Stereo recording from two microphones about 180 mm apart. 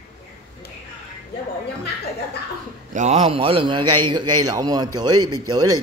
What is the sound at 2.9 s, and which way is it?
A man's voice, 35° right (ahead or behind).